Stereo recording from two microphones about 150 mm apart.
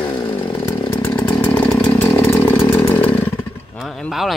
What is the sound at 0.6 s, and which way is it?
Chainsaw, 25° left (ahead or behind).